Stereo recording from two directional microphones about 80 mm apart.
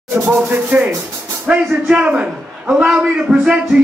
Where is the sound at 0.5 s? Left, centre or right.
Centre.